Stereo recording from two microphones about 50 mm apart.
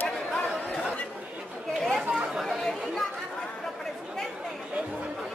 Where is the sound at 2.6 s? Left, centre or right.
Centre.